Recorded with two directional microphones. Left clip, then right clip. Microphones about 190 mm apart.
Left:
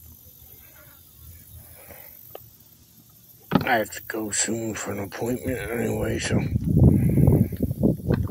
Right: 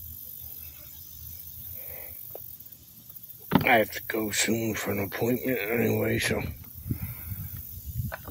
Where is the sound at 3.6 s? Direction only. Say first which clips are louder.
Right 2 dB; 20° right (ahead or behind).